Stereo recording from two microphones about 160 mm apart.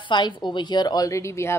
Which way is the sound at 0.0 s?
30° left (ahead or behind).